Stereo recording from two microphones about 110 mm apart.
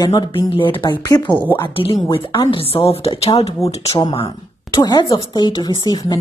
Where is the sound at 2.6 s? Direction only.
60° left (ahead or behind).